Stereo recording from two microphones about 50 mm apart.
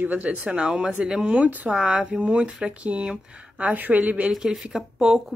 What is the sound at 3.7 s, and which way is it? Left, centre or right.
Speech, right.